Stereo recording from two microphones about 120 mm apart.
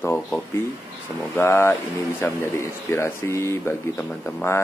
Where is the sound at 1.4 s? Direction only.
20° left (ahead or behind).